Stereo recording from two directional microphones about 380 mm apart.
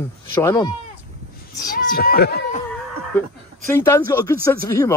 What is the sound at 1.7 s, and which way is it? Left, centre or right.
Speech, left.